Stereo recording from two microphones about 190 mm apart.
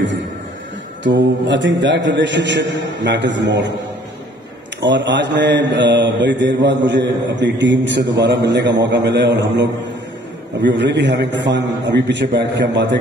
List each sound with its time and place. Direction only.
1.0 s a man's voice: 70° right (ahead or behind)
4.8 s a man's voice: 70° right (ahead or behind)